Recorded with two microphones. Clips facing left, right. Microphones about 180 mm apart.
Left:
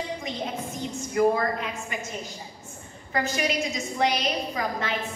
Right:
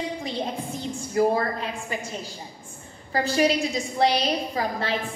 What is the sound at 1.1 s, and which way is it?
Speech, 35° right (ahead or behind).